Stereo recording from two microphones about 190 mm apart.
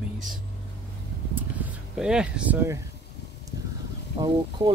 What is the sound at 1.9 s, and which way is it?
Speech, 5° right (ahead or behind).